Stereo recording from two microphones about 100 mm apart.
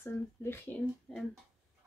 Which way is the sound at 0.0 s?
25° left (ahead or behind).